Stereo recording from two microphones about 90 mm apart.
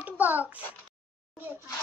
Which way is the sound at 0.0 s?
20° right (ahead or behind).